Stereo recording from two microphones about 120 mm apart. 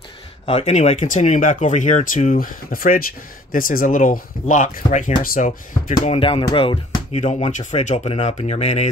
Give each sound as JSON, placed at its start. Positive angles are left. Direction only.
{"t": 0.5, "sound": "speech", "side_deg": 60}
{"t": 3.8, "sound": "speech", "side_deg": 90}
{"t": 6.1, "sound": "speech", "side_deg": 50}
{"t": 7.2, "sound": "speech", "side_deg": 65}